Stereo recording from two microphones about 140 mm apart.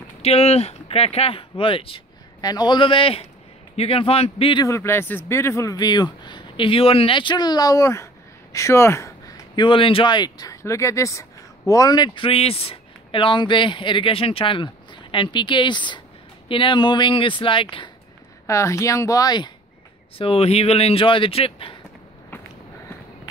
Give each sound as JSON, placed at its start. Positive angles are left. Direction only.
{"t": 0.2, "sound": "speech", "side_deg": 45}
{"t": 4.6, "sound": "speech", "side_deg": 20}
{"t": 9.6, "sound": "speech", "side_deg": 40}
{"t": 18.5, "sound": "speech", "side_deg": 20}
{"t": 20.2, "sound": "speech", "side_deg": 45}